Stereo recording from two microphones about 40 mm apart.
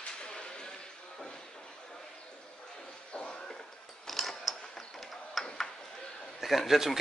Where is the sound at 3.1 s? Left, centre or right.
Left.